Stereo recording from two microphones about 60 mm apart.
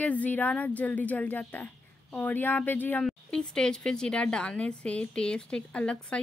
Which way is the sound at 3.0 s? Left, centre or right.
Centre.